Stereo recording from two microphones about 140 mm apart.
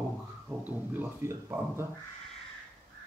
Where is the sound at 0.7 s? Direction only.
10° right (ahead or behind).